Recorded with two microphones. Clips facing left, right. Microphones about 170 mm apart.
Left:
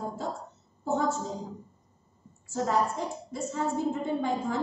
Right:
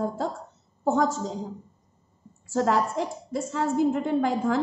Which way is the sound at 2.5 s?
90° right.